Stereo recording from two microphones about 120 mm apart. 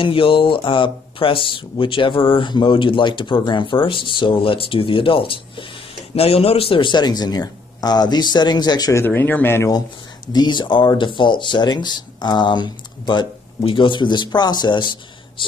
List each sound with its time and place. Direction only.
0.0 s speech: 45° left (ahead or behind)
6.1 s speech: 55° left (ahead or behind); by 9.0 s 35° left (ahead or behind)
9.0 s speech: 20° left (ahead or behind)
10.3 s speech: 40° left (ahead or behind)